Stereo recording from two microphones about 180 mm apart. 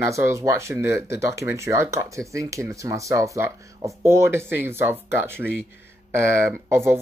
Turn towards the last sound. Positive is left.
turn(degrees=-15)  # may be behind; listen again after turning